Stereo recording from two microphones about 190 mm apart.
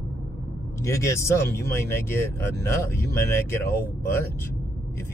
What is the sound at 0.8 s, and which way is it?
Speech, 15° left (ahead or behind).